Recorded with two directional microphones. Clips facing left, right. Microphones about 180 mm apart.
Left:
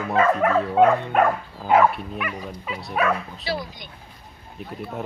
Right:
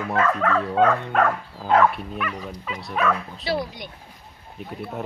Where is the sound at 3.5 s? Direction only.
65° right (ahead or behind).